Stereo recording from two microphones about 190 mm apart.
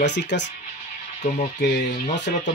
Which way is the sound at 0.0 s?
65° left (ahead or behind).